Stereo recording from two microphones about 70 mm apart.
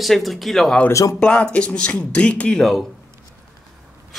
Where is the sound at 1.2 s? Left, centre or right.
Centre.